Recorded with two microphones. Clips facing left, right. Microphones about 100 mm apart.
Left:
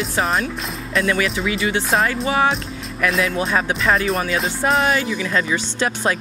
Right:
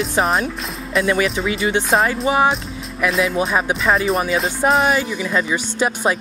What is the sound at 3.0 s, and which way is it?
Speech, centre (ahead or behind).